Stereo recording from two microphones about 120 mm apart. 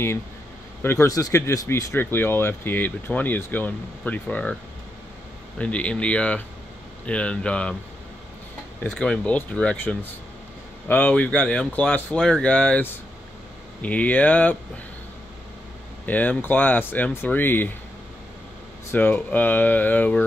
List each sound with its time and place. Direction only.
0.8 s speech: 25° left (ahead or behind)
5.6 s speech: 10° left (ahead or behind)
8.9 s speech: 5° left (ahead or behind)
16.1 s speech: 15° left (ahead or behind)
18.9 s speech: 15° left (ahead or behind)